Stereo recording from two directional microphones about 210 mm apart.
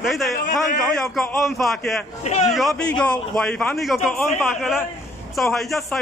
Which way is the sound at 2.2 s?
30° left (ahead or behind).